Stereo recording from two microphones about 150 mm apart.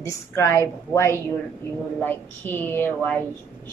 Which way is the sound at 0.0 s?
20° left (ahead or behind).